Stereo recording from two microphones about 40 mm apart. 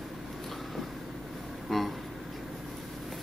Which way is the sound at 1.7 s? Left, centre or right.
Centre.